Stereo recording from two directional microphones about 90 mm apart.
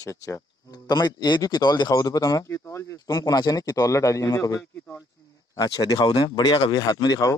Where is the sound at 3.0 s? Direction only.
45° left (ahead or behind).